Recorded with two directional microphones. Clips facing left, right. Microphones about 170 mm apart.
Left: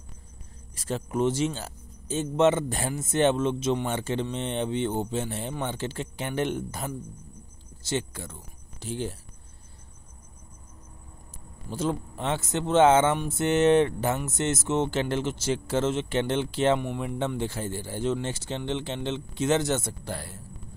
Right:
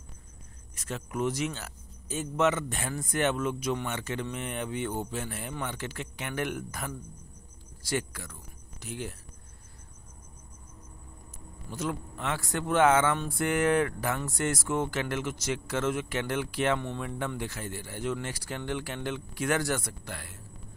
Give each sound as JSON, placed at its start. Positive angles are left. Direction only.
{"t": 0.7, "sound": "speech", "side_deg": 30}
{"t": 11.7, "sound": "speech", "side_deg": 30}
{"t": 16.8, "sound": "speech", "side_deg": 15}
{"t": 17.4, "sound": "speech", "side_deg": 30}